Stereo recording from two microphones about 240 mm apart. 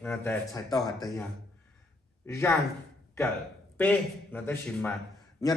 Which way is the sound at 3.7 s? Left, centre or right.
Centre.